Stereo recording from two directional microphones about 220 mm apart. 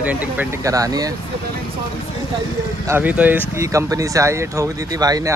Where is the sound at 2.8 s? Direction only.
10° right (ahead or behind).